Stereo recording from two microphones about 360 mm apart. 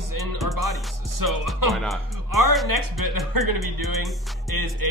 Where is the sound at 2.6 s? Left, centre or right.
Right.